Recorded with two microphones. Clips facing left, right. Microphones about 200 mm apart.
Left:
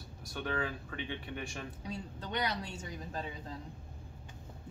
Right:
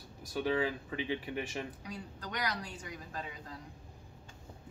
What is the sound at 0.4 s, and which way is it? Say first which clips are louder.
Speech: right 5 dB; 15° right (ahead or behind).